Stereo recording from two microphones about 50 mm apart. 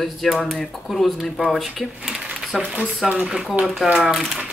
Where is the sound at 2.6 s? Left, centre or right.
Right.